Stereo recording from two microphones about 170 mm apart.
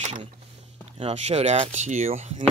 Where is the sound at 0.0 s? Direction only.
40° right (ahead or behind).